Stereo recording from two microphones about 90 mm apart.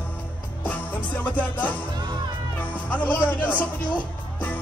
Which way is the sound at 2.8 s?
15° left (ahead or behind).